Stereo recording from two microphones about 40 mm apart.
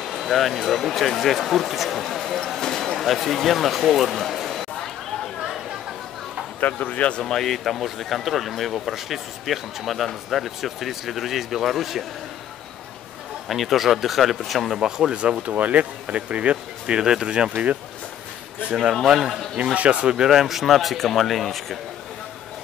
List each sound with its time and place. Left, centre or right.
0.0 s speech: centre
6.6 s speech: left
7.2 s speech: centre
7.5 s speech: centre
13.5 s speech: centre
14.8 s speech: centre
15.4 s speech: right
17.0 s a man's voice: centre
17.3 s speech: right
19.0 s a man's voice: centre
19.5 s speech: right
20.2 s speech: centre